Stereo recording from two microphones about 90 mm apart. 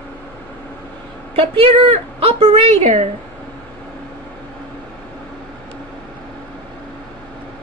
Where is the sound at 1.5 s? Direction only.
90° right.